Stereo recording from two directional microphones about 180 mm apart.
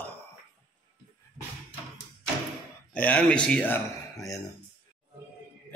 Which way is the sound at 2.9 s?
10° left (ahead or behind).